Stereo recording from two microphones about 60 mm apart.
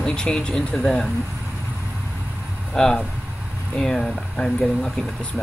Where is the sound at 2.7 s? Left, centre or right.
Centre.